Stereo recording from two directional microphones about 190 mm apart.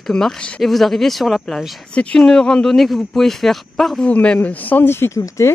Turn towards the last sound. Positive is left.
turn(degrees=15)  # may be behind; listen again after turning